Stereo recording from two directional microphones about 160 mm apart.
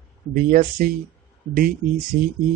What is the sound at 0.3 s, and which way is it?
Speech, 60° right (ahead or behind).